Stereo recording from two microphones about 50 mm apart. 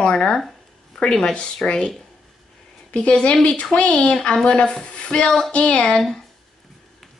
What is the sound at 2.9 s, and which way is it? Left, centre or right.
Speech, left.